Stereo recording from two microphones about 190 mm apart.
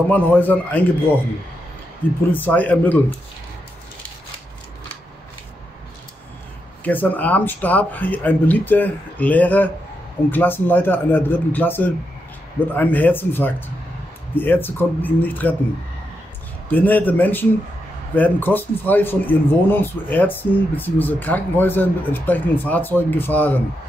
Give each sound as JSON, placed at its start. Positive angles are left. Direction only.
{"t": 0.1, "sound": "speech", "side_deg": 10}
{"t": 2.0, "sound": "speech", "side_deg": 10}
{"t": 6.8, "sound": "speech", "side_deg": 10}
{"t": 16.6, "sound": "speech", "side_deg": 10}